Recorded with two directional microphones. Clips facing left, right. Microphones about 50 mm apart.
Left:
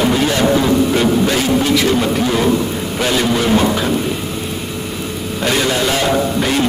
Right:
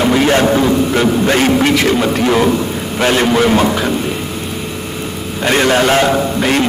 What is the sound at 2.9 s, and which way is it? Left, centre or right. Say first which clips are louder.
Speech: right 4 dB; right.